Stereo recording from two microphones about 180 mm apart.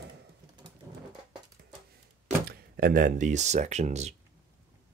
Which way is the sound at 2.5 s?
50° right (ahead or behind).